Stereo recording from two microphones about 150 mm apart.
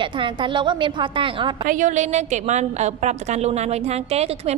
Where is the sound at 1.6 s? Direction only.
55° right (ahead or behind).